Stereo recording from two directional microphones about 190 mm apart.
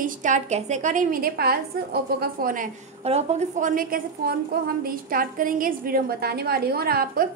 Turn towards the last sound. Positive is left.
turn(degrees=-55)  # may be behind; listen again after turning